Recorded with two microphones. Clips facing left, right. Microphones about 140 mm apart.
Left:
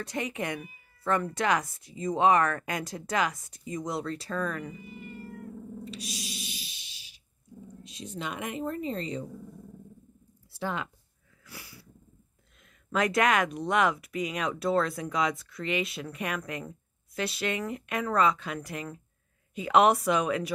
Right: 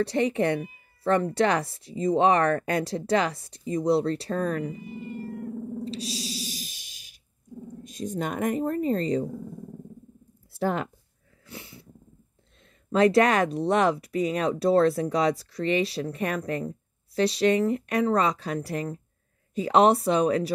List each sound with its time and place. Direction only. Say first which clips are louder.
0.0 s speech: right 9 dB; 30° right (ahead or behind)
5.9 s music: right 7 dB; 30° right (ahead or behind)
7.6 s speech: right 9 dB; 45° right (ahead or behind)
10.5 s speech: right 7 dB; 45° right (ahead or behind)
11.4 s a sound: right 5 dB; 25° right (ahead or behind)
12.9 s speech: right 6 dB; 30° right (ahead or behind)